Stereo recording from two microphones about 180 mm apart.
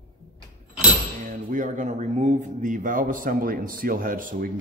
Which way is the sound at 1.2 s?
45° right (ahead or behind).